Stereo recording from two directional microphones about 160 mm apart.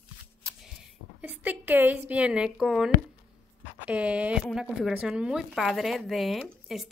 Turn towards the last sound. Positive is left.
turn(degrees=0)  # may be behind; listen again after turning